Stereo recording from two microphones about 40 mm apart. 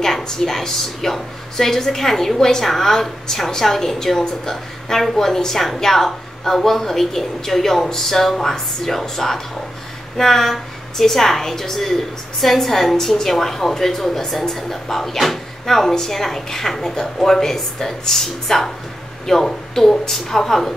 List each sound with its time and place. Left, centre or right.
0.0 s a woman's voice: centre